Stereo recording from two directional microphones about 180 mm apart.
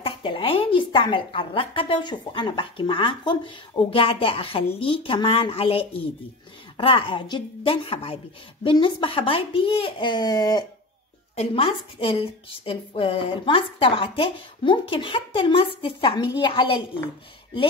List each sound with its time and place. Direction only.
0.0 s a woman's voice: 30° left (ahead or behind)
11.3 s a woman's voice: 30° left (ahead or behind)